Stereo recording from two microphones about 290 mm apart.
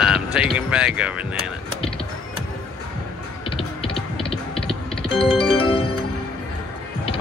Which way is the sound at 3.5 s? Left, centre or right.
Centre.